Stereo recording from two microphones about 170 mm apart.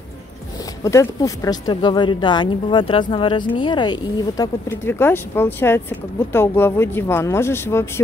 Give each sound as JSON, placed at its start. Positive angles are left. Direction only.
{"t": 0.8, "sound": "speech", "side_deg": 20}
{"t": 4.6, "sound": "speech", "side_deg": 15}